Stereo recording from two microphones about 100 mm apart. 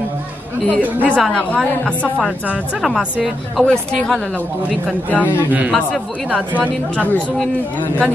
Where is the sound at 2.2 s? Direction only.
5° right (ahead or behind).